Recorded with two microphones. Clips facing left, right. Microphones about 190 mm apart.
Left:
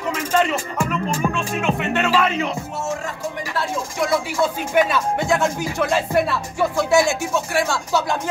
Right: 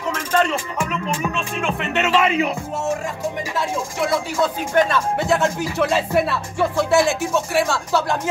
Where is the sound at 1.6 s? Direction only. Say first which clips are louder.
Left 1 dB; 5° left (ahead or behind).